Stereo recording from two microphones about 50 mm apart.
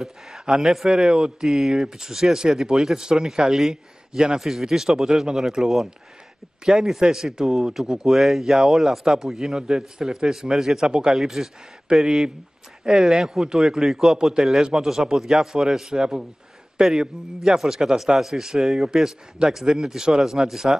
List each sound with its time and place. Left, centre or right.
0.0 s speech: centre
11.1 s a man's voice: centre